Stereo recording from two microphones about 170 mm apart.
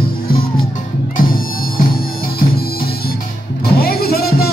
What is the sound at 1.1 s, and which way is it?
Bagpipes, 60° left (ahead or behind).